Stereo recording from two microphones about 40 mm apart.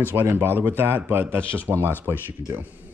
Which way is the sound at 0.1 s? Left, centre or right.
Right.